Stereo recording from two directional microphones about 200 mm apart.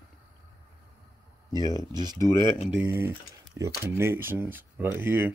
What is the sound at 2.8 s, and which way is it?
Speech, 10° right (ahead or behind).